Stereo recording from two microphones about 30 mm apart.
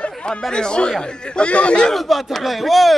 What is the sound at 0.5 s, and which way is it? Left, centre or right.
Speech, left.